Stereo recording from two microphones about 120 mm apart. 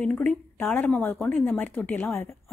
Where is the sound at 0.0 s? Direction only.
10° left (ahead or behind).